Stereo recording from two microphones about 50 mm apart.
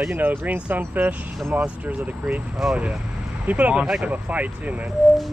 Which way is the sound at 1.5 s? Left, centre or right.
Right.